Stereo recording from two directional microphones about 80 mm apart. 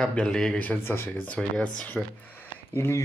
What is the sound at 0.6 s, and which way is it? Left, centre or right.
Speech, left.